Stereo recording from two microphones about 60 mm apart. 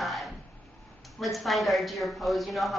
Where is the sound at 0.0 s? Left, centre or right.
Centre.